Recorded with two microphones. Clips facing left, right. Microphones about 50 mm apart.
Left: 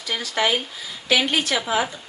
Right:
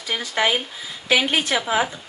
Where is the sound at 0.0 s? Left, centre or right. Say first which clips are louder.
Right 1 dB; centre.